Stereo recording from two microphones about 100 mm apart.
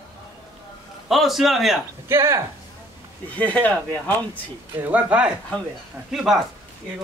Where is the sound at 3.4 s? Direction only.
15° left (ahead or behind).